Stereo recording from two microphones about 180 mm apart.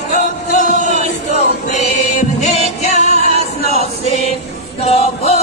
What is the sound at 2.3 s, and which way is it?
Music, 40° left (ahead or behind).